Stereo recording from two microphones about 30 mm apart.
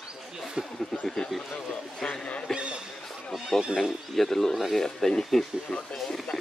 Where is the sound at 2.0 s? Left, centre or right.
Centre.